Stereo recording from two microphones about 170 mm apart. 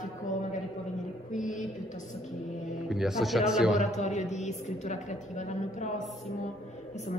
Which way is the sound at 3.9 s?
45° left (ahead or behind).